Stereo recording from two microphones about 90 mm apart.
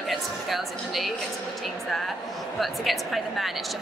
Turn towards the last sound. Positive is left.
turn(degrees=0)  # may be behind; listen again after turning